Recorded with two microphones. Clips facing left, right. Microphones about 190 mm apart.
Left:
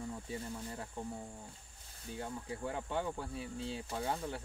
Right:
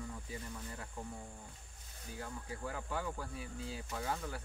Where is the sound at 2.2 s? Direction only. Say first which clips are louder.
Left 3 dB; 25° left (ahead or behind).